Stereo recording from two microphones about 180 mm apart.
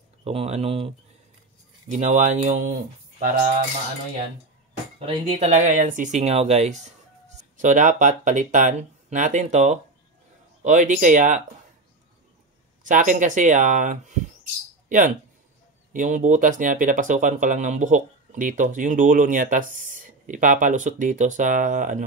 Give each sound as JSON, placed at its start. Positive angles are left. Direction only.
{"t": 0.2, "sound": "speech", "side_deg": -35}
{"t": 4.9, "sound": "speech", "side_deg": -35}
{"t": 12.8, "sound": "speech", "side_deg": -45}